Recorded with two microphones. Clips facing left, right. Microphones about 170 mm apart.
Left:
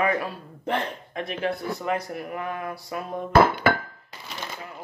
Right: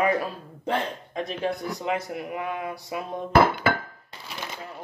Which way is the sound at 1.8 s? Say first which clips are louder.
Even; 15° right (ahead or behind).